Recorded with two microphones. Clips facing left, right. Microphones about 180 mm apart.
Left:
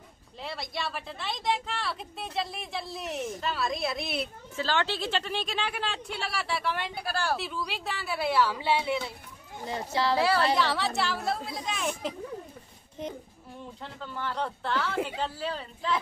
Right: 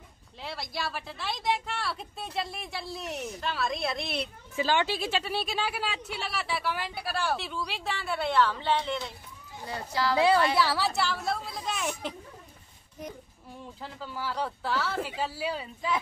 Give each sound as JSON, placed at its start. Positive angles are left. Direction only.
{"t": 0.4, "sound": "speech", "side_deg": 0}
{"t": 4.6, "sound": "speech", "side_deg": -15}
{"t": 9.7, "sound": "speech", "side_deg": 25}
{"t": 10.1, "sound": "a woman's voice", "side_deg": -20}
{"t": 10.5, "sound": "speech", "side_deg": -5}
{"t": 13.0, "sound": "speech", "side_deg": 25}
{"t": 13.7, "sound": "speech", "side_deg": -5}